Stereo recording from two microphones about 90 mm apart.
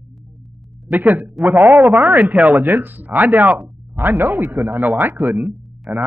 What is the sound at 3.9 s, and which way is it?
Speech, 30° right (ahead or behind).